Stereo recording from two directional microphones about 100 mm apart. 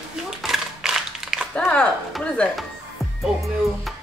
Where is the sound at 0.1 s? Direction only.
5° right (ahead or behind).